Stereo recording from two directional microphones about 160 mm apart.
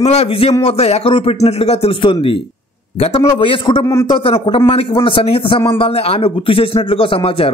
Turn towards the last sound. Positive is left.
turn(degrees=35)  # may be behind; listen again after turning